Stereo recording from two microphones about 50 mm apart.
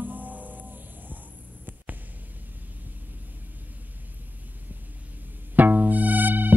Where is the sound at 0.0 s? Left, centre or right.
Right.